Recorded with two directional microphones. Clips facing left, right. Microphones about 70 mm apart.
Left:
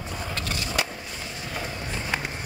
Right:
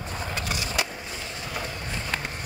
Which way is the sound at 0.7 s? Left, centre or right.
Centre.